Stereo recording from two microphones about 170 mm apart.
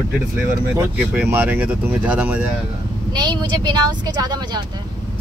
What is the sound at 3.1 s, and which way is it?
Speech, 25° right (ahead or behind).